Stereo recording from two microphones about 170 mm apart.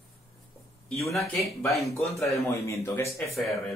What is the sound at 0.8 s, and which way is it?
Speech, centre (ahead or behind).